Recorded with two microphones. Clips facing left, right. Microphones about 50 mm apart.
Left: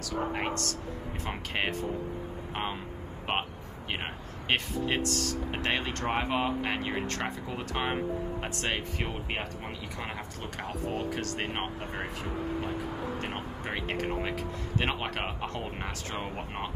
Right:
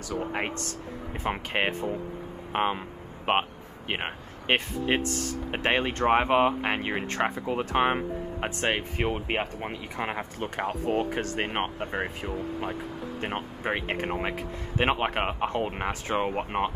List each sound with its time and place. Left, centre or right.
0.3 s speech: right
3.3 s speech: centre
3.9 s speech: right